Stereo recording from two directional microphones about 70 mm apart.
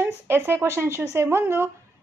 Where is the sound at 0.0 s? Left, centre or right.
Right.